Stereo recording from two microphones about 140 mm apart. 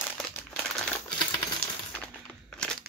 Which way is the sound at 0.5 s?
10° left (ahead or behind).